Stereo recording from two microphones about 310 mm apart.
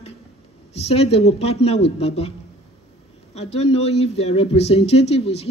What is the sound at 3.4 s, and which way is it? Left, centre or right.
A man's voice, centre.